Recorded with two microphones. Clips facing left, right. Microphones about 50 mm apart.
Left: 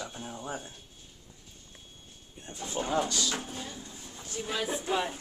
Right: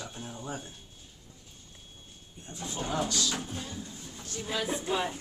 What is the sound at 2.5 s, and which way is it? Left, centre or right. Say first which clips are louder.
Speech: left 2 dB; left.